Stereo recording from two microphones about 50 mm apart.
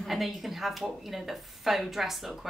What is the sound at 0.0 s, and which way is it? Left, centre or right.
A woman's voice, centre.